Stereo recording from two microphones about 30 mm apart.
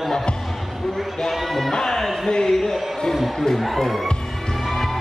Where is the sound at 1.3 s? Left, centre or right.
Centre.